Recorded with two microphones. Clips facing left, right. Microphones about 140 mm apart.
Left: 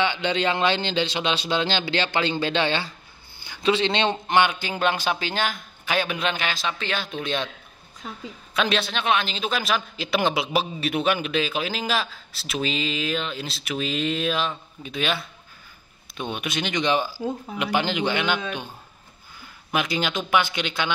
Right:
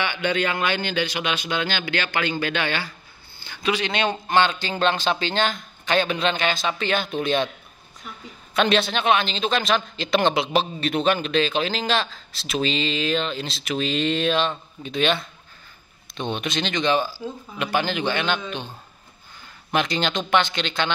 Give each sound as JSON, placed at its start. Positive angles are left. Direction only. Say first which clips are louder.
{"t": 0.0, "sound": "a man's voice", "louder": "left 1 dB", "side_deg": 20}
{"t": 8.5, "sound": "a man's voice", "louder": "right 4 dB", "side_deg": 0}
{"t": 19.7, "sound": "speech", "louder": "right 2 dB", "side_deg": 5}